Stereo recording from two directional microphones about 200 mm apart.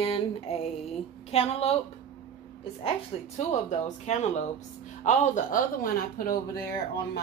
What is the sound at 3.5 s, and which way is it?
Speech, 35° left (ahead or behind).